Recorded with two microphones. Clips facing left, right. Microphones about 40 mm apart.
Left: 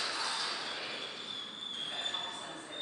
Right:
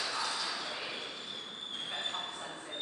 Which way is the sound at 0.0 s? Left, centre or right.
Centre.